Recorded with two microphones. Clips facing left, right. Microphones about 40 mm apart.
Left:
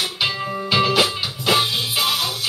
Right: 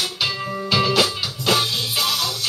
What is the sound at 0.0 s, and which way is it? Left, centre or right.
Music, left.